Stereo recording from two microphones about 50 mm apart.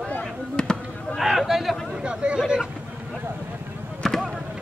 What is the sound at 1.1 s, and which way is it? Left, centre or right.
Speech, centre.